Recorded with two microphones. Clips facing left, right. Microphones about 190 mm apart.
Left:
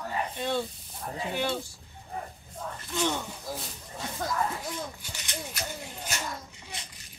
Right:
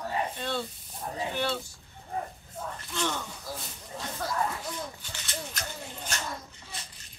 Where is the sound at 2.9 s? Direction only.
10° left (ahead or behind).